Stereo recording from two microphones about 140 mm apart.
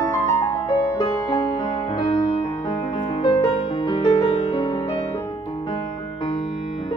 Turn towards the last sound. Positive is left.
turn(degrees=30)  # may be behind; listen again after turning